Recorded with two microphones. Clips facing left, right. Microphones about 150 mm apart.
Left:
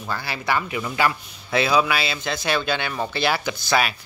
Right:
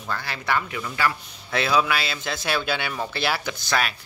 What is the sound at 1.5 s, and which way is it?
Speech, 5° left (ahead or behind).